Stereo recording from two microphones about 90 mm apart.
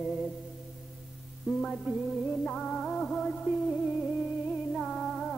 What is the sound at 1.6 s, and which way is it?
Music, 5° left (ahead or behind).